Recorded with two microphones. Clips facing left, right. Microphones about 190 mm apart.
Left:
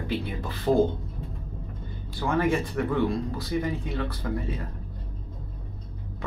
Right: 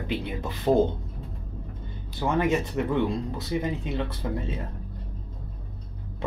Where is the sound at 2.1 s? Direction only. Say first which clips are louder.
Even; 20° right (ahead or behind).